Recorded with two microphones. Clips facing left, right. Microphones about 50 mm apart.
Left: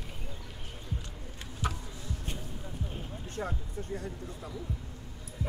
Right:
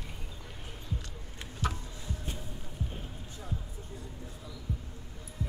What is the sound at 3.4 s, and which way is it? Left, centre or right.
Speech, left.